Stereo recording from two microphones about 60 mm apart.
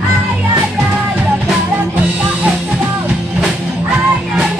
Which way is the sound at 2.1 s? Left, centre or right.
Centre.